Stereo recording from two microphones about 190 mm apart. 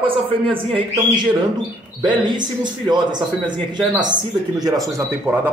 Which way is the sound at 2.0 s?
25° right (ahead or behind).